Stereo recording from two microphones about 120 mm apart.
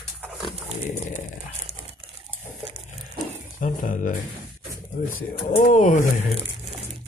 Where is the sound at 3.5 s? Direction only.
90° left.